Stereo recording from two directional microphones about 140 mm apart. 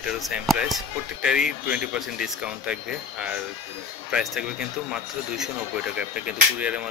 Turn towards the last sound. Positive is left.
turn(degrees=-10)  # may be behind; listen again after turning